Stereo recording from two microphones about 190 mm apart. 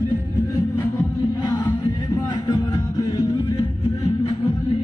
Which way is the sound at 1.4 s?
20° left (ahead or behind).